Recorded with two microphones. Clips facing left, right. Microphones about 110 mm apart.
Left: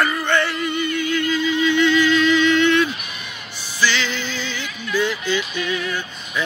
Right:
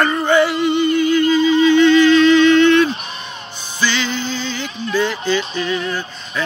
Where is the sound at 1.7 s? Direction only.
5° left (ahead or behind).